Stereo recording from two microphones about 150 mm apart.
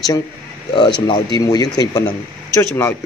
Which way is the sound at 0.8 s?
30° left (ahead or behind).